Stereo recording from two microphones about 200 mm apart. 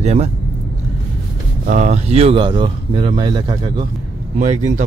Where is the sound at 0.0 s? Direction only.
35° right (ahead or behind).